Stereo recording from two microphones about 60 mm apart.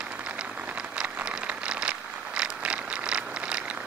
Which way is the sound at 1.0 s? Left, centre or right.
Right.